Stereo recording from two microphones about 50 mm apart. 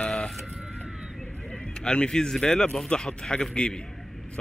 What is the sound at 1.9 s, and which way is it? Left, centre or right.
Speech, centre.